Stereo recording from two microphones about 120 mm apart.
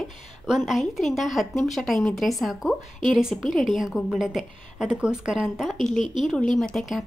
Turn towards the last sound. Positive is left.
turn(degrees=0)  # may be behind; listen again after turning